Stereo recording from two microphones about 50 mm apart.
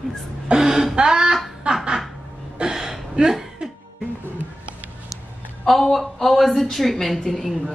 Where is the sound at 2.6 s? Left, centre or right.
Centre.